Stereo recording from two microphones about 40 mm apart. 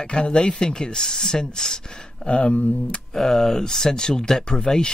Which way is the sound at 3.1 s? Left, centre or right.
Centre.